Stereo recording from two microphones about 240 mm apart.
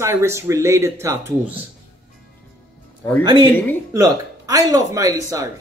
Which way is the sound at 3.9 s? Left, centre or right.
Centre.